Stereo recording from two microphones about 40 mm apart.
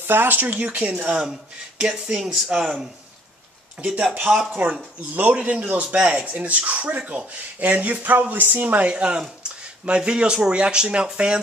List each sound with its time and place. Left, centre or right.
0.0 s speech: right
1.8 s speech: right
2.2 s speech: centre
4.1 s a man's voice: right
7.6 s speech: right
8.8 s speech: right